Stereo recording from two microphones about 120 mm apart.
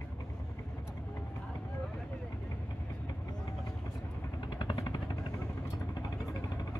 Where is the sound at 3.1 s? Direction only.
30° left (ahead or behind).